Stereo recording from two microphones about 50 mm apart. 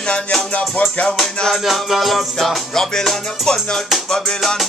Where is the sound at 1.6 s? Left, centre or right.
Centre.